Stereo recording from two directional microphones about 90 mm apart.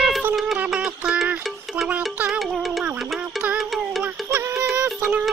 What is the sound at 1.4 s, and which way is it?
Music, centre (ahead or behind).